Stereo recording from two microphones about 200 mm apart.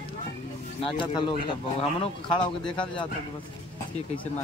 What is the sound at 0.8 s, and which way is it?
Speech, 25° left (ahead or behind).